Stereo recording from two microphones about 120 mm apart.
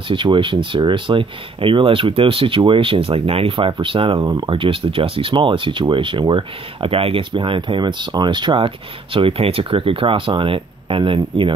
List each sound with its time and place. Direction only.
0.1 s speech: 45° right (ahead or behind)